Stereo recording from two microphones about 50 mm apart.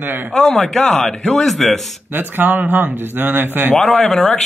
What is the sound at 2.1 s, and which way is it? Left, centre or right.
Speech, right.